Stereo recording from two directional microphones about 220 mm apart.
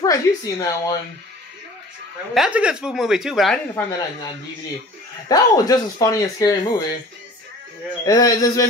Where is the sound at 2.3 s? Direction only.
5° right (ahead or behind).